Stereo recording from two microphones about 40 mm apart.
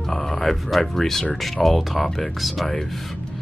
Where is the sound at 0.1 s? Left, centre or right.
Centre.